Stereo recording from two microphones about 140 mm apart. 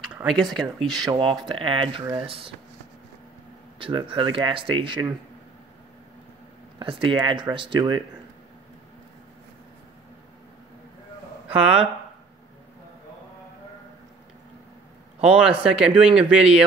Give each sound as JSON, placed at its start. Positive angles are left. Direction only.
{"t": 0.0, "sound": "speech", "side_deg": -5}
{"t": 1.0, "sound": "speech", "side_deg": -35}
{"t": 3.8, "sound": "speech", "side_deg": -35}
{"t": 6.8, "sound": "speech", "side_deg": -35}
{"t": 11.4, "sound": "speech", "side_deg": -5}
{"t": 15.2, "sound": "speech", "side_deg": -5}